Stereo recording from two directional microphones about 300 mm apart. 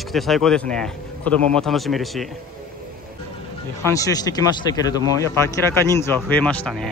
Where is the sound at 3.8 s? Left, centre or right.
Centre.